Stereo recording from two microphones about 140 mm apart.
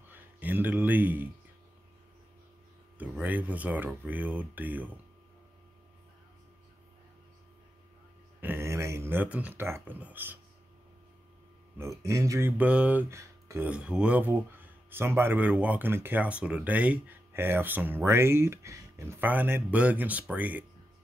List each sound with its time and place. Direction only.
0.1 s speech: 15° right (ahead or behind)
3.0 s speech: 10° right (ahead or behind)
8.4 s speech: 15° right (ahead or behind)
11.8 s speech: 20° right (ahead or behind)
13.7 s speech: 5° right (ahead or behind)